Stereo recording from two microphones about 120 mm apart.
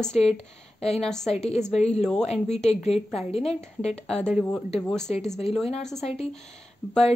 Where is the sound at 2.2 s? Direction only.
65° left (ahead or behind).